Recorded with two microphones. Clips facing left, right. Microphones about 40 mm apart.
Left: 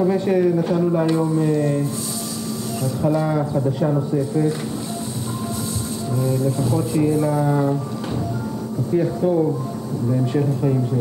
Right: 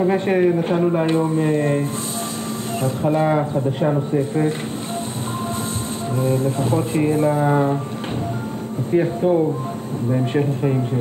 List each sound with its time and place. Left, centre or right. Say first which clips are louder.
0.0 s speech: right 1 dB; right
6.2 s speech: right 1 dB; right
8.9 s speech: right 2 dB; right